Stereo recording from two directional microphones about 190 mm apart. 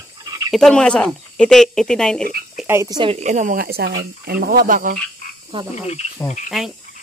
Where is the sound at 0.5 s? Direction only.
5° left (ahead or behind).